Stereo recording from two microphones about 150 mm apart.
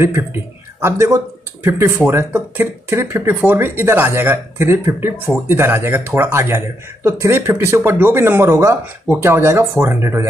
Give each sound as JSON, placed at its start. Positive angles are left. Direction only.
{"t": 0.0, "sound": "a man's voice", "side_deg": -15}